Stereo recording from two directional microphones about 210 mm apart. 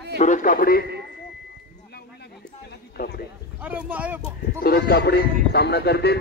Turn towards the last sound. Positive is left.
turn(degrees=50)  # may be behind; listen again after turning